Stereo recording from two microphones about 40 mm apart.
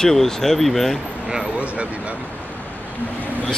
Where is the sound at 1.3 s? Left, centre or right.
Right.